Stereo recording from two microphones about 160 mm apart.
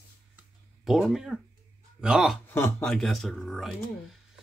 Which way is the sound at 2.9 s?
Centre (ahead or behind).